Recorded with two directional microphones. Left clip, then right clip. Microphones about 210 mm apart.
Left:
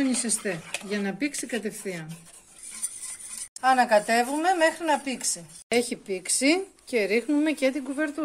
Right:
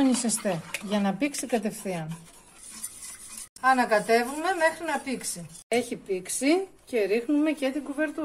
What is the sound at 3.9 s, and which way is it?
A woman's voice, 40° left (ahead or behind).